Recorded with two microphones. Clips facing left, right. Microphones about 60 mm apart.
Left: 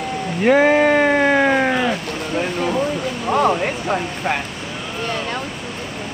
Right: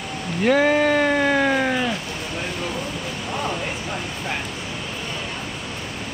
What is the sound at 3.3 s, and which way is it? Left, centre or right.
Speech, left.